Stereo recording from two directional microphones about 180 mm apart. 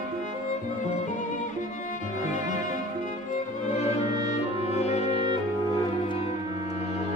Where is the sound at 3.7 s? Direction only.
35° left (ahead or behind).